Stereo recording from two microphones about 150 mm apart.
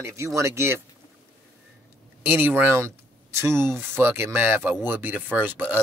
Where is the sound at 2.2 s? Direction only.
15° right (ahead or behind).